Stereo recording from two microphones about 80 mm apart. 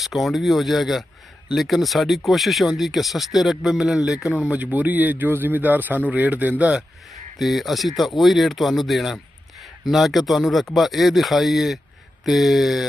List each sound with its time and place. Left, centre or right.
0.0 s speech: centre
4.5 s speech: right
7.3 s speech: centre